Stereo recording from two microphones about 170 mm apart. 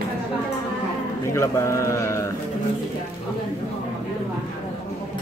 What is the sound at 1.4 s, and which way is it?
Mantra, 15° left (ahead or behind).